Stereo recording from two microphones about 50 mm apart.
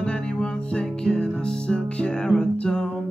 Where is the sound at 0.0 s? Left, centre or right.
Centre.